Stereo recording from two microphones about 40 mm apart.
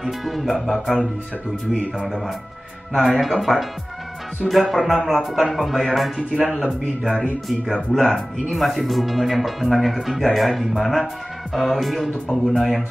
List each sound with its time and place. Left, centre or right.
0.0 s speech: centre
1.7 s a man's voice: centre
2.0 s a man's voice: centre
7.4 s a man's voice: centre